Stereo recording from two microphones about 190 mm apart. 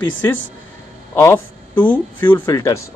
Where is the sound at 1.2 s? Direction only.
15° left (ahead or behind).